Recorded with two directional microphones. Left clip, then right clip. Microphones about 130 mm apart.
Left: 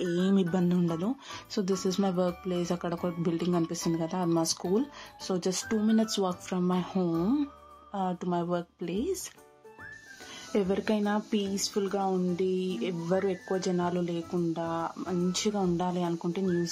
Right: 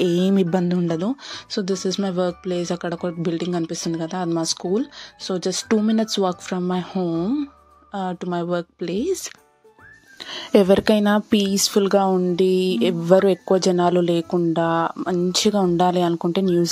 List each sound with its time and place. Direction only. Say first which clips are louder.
0.0 s speech: right 9 dB; 60° right (ahead or behind); by 1.0 s 35° right (ahead or behind)
1.5 s speech: right 6 dB; 25° right (ahead or behind)
5.9 s speech: right 8 dB; 40° right (ahead or behind)
6.9 s speech: right 6 dB; 15° right (ahead or behind)
7.9 s speech: right 5 dB; 30° right (ahead or behind)
10.5 s speech: right 13 dB; 90° right
15.0 s speech: right 11 dB; 70° right (ahead or behind); by 16.4 s 90° right